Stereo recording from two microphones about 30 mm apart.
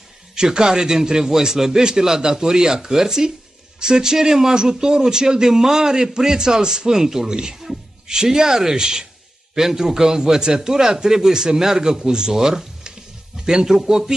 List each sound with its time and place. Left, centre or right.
0.4 s a man's voice: right